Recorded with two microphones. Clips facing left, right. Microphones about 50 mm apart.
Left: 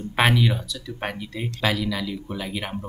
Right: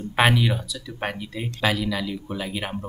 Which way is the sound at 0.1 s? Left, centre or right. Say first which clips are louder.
Even; centre.